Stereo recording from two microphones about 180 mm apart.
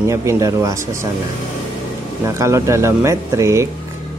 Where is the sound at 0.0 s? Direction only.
15° right (ahead or behind).